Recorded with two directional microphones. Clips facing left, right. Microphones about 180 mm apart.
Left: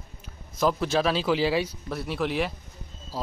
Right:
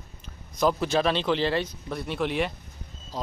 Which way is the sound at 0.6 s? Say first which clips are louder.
Even; centre (ahead or behind).